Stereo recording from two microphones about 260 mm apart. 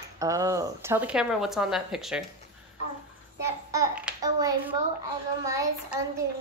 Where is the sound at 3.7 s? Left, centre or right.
Centre.